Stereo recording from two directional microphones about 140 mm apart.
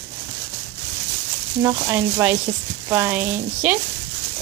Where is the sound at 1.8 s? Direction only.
15° right (ahead or behind).